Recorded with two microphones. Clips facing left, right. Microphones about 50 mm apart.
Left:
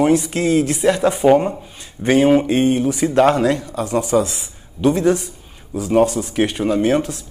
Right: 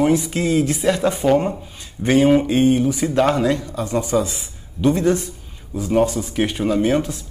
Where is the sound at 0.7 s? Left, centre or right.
Centre.